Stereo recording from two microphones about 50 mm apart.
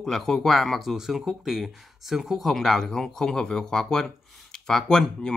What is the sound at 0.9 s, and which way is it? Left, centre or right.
Speech, centre.